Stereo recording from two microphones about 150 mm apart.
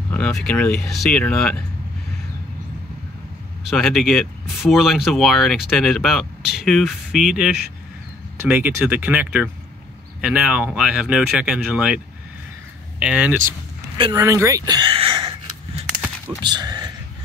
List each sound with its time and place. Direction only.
0.1 s speech: 5° left (ahead or behind)
3.7 s speech: centre (ahead or behind)
13.0 s speech: 5° right (ahead or behind)
14.1 s a sound: 20° right (ahead or behind)
15.9 s a sound: 5° right (ahead or behind)
16.4 s speech: 30° right (ahead or behind)